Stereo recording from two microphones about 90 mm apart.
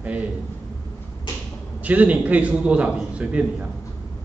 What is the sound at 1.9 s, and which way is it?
A man's voice, 15° right (ahead or behind).